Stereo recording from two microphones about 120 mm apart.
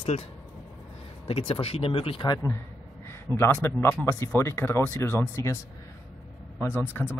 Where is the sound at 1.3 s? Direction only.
50° left (ahead or behind).